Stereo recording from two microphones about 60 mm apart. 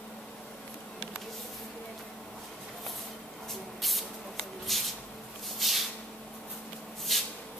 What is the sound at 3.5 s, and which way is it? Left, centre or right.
Spray, centre.